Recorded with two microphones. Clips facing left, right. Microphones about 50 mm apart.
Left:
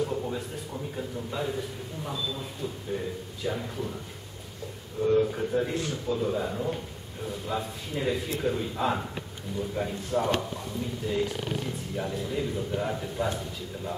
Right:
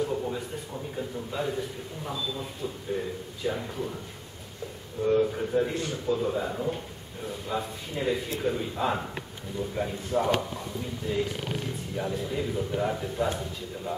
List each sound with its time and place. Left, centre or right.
0.0 s a sound: centre
0.9 s speech: centre
5.0 s speech: centre